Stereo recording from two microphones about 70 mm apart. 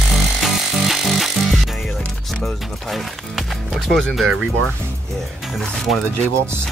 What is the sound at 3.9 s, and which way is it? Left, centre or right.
Speech, centre.